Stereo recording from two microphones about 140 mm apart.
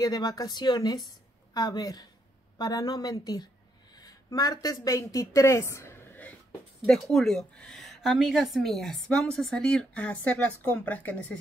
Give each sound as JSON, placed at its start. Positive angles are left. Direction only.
{"t": 0.0, "sound": "a woman's voice", "side_deg": 25}
{"t": 6.9, "sound": "a woman's voice", "side_deg": 5}